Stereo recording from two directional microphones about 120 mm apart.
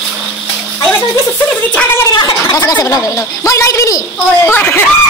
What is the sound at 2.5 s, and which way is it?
A woman's voice, 25° left (ahead or behind).